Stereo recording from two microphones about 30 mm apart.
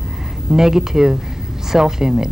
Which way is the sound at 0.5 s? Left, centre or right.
Centre.